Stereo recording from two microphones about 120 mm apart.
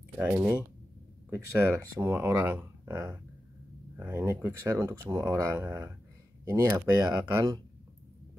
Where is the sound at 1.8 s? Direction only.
25° right (ahead or behind).